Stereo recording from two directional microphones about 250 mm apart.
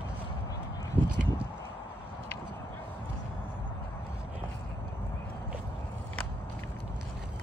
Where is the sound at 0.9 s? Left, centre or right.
Centre.